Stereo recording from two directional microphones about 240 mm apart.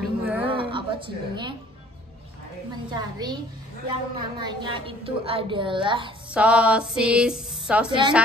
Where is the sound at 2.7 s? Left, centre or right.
Centre.